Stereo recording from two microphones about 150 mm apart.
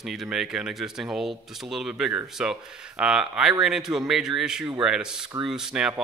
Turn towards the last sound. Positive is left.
turn(degrees=-5)  # may be behind; listen again after turning